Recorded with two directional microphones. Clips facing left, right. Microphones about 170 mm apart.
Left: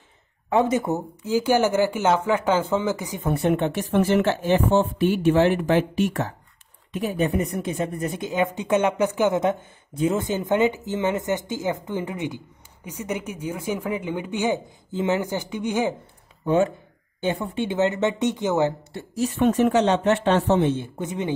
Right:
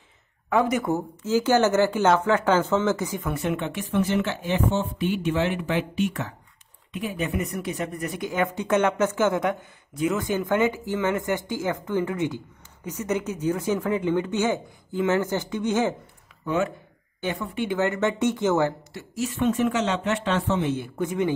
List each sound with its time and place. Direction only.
0.5 s a woman's voice: 25° left (ahead or behind)
3.3 s a woman's voice: 35° left (ahead or behind); by 15.9 s 15° left (ahead or behind)
16.4 s a woman's voice: 30° left (ahead or behind)
18.9 s speech: 35° left (ahead or behind)
20.7 s a woman's voice: 20° left (ahead or behind)